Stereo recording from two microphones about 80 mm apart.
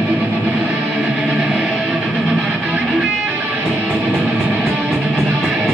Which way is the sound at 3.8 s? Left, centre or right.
Right.